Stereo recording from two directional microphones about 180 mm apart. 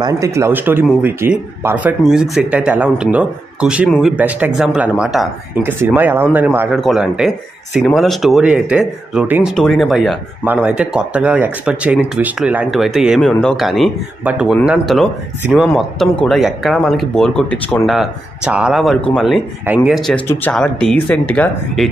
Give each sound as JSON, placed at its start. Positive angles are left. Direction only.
{"t": 0.0, "sound": "speech", "side_deg": -20}
{"t": 6.7, "sound": "speech", "side_deg": 0}
{"t": 17.9, "sound": "speech", "side_deg": -5}